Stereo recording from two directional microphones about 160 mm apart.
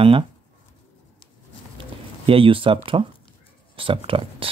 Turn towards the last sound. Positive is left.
turn(degrees=-35)  # may be behind; listen again after turning